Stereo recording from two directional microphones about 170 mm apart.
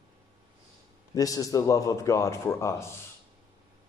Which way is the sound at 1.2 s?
20° left (ahead or behind).